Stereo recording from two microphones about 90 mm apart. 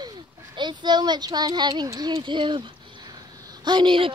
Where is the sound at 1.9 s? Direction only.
50° right (ahead or behind).